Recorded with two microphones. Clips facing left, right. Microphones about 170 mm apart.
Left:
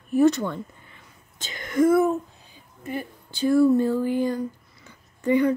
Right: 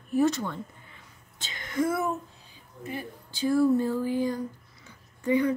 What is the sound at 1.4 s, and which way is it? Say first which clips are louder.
Whispering: left 7 dB; 45° left (ahead or behind).